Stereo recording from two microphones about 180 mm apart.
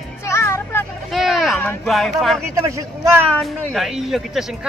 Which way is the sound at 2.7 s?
15° right (ahead or behind).